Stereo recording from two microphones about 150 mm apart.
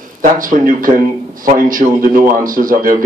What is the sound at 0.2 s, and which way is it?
A man's voice, 65° right (ahead or behind).